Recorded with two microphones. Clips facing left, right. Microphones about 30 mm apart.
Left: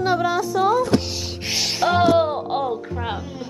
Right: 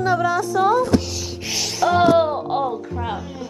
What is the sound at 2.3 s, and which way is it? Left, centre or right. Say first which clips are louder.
Speech: right 1 dB; centre.